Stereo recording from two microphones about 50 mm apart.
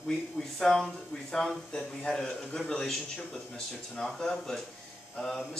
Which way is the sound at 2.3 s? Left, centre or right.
Left.